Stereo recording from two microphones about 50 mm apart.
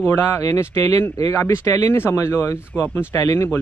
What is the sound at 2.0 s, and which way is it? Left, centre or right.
Speech, left.